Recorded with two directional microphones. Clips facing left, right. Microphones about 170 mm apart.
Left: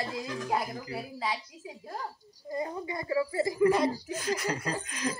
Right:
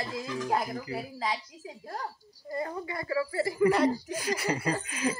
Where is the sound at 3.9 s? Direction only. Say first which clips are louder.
Right 1 dB; 10° right (ahead or behind).